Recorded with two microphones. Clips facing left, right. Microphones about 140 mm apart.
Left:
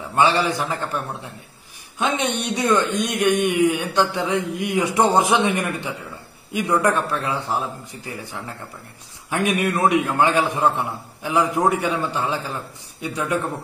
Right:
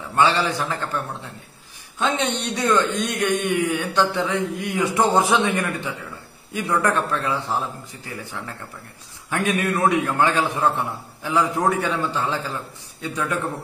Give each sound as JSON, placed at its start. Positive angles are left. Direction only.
{"t": 0.1, "sound": "a man's voice", "side_deg": 15}